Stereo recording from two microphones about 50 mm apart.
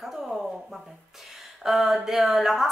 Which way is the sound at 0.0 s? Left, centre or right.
Centre.